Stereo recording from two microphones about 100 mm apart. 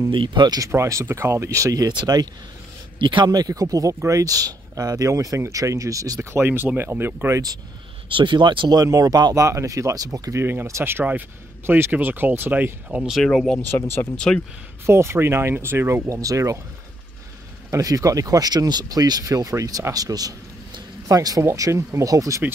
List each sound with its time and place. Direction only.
0.1 s speech: 55° right (ahead or behind)
0.6 s speech: 30° right (ahead or behind)
3.0 s speech: 55° right (ahead or behind)
3.3 s speech: 40° right (ahead or behind)
6.4 s speech: 20° right (ahead or behind)
8.1 s speech: 55° right (ahead or behind)
8.8 s speech: 35° right (ahead or behind)
10.4 s speech: 20° right (ahead or behind)
13.2 s speech: 5° left (ahead or behind)
13.7 s speech: 20° left (ahead or behind)
14.1 s speech: 10° left (ahead or behind)
14.9 s speech: 25° right (ahead or behind)
17.6 s speech: 35° right (ahead or behind)